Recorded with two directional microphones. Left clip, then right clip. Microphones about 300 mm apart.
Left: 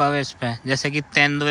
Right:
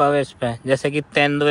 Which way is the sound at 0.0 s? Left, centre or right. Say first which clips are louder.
Right 3 dB; centre.